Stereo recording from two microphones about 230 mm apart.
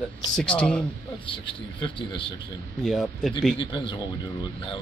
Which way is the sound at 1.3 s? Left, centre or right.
Left.